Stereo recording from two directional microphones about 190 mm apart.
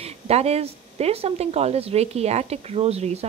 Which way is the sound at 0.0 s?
35° right (ahead or behind).